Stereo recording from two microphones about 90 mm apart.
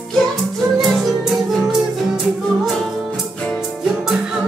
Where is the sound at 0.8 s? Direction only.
Centre (ahead or behind).